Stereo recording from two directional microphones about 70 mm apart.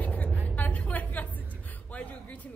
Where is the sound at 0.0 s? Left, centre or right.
Left.